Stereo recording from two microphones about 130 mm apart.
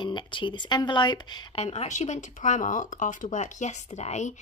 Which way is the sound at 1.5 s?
55° left (ahead or behind).